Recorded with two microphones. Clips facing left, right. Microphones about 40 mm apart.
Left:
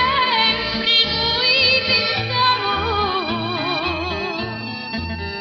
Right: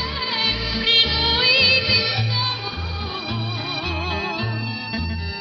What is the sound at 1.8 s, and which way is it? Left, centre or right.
Music, centre.